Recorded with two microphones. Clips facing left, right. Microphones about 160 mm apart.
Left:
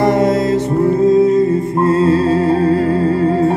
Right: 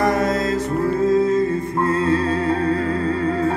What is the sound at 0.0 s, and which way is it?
Music, 25° left (ahead or behind).